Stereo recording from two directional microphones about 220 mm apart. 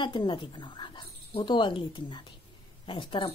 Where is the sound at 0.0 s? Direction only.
20° left (ahead or behind).